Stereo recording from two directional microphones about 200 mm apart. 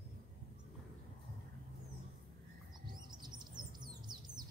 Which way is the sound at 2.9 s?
20° right (ahead or behind).